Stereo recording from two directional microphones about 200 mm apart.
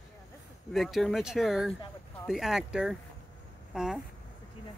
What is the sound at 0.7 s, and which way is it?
Speech, centre (ahead or behind).